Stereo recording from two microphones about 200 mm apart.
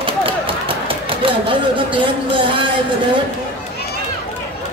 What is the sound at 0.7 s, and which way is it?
Speech, 25° right (ahead or behind).